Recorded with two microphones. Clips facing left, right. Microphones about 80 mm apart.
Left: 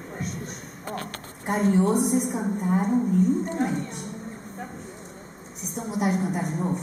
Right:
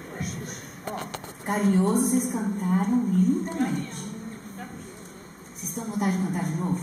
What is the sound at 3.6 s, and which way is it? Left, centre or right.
Speech, left.